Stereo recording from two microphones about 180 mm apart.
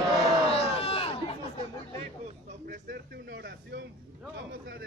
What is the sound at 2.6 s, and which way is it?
Speech, 65° right (ahead or behind).